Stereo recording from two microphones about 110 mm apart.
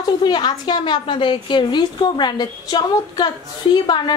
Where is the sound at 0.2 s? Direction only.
40° left (ahead or behind).